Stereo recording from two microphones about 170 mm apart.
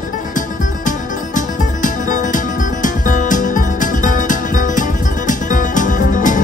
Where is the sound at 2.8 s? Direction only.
50° left (ahead or behind).